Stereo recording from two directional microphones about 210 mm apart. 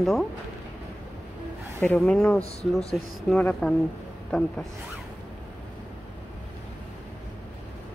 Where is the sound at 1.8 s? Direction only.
5° left (ahead or behind).